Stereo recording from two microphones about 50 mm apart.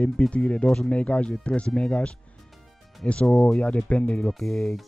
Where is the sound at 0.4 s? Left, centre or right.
Centre.